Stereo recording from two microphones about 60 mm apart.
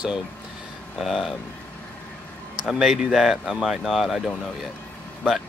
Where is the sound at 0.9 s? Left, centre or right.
Centre.